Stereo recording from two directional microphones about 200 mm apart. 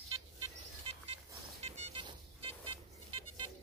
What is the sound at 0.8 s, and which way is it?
Vehicle, 30° right (ahead or behind).